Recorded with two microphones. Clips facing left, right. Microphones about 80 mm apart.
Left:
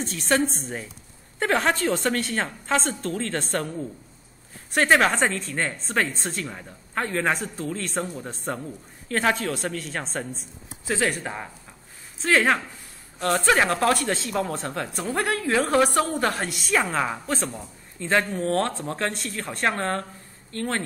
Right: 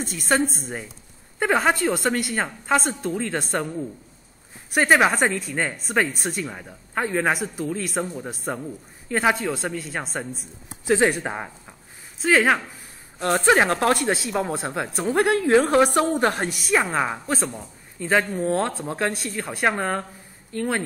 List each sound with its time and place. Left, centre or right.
0.0 s speech: centre
4.7 s speech: centre
10.9 s speech: centre
13.5 s speech: right
15.3 s speech: right
16.5 s speech: centre